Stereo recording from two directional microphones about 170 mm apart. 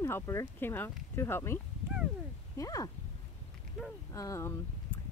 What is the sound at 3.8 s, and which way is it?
Speech, centre (ahead or behind).